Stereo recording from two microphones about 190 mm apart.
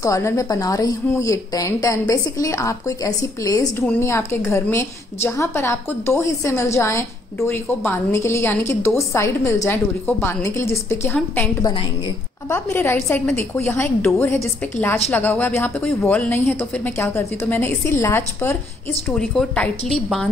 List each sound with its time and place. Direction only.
0.0 s a woman's voice: 15° left (ahead or behind)
19.0 s a woman's voice: centre (ahead or behind)